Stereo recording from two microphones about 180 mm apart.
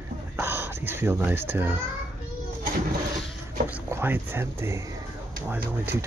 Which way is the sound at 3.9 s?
10° right (ahead or behind).